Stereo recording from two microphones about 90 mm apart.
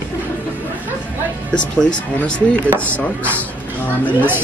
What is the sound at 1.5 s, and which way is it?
Speech, 10° left (ahead or behind).